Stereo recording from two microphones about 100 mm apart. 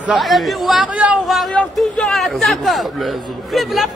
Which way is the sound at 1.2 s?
Centre (ahead or behind).